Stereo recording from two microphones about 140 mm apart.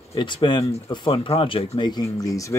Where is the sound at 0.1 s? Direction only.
30° left (ahead or behind).